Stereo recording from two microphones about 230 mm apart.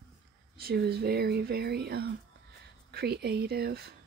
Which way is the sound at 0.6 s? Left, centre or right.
Right.